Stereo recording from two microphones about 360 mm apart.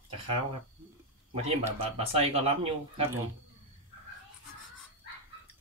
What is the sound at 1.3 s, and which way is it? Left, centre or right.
Speech, centre.